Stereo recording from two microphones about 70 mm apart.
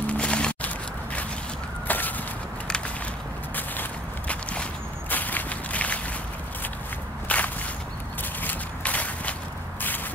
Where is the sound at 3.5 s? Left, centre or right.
Left.